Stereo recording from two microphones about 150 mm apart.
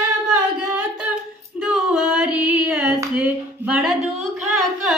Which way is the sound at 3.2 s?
5° right (ahead or behind).